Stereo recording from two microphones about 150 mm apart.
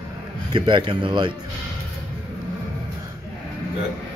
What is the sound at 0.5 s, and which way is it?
Speech, 30° right (ahead or behind).